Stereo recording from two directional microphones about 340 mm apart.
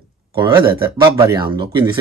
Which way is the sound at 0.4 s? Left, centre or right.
Centre.